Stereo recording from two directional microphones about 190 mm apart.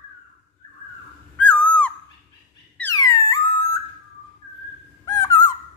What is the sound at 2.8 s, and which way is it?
Squeak, 15° left (ahead or behind).